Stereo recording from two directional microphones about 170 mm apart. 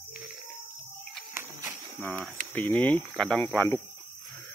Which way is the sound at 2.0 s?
10° left (ahead or behind).